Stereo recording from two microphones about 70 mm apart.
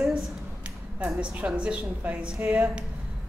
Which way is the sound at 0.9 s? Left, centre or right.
Centre.